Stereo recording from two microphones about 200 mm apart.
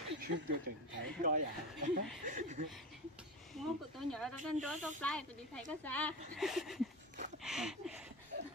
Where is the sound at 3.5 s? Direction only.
Centre (ahead or behind).